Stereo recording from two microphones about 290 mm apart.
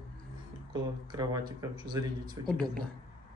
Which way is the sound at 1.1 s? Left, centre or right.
Centre.